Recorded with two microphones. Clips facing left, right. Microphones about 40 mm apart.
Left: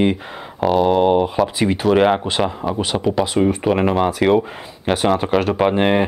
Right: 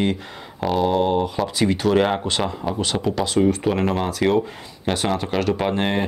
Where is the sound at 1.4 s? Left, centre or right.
Centre.